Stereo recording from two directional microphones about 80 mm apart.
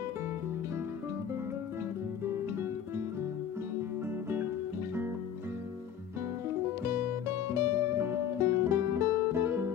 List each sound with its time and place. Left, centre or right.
6.8 s music: right